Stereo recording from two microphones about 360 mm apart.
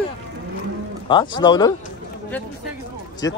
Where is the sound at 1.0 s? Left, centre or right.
Centre.